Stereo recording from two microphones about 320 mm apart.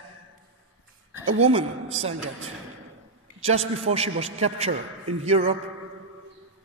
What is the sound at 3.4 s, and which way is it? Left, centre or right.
Speech, centre.